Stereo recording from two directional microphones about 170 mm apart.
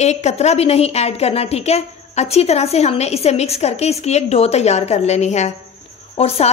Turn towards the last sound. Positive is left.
turn(degrees=35)  # may be behind; listen again after turning